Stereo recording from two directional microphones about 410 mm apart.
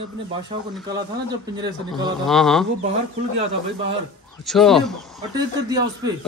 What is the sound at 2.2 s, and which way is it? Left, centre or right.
Speech, centre.